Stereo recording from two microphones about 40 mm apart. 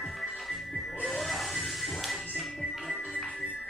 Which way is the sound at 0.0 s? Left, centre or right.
Centre.